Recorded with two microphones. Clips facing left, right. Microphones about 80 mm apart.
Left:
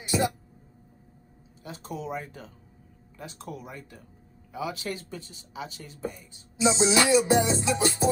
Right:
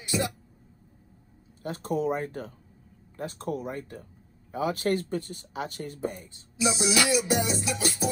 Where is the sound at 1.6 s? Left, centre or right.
Right.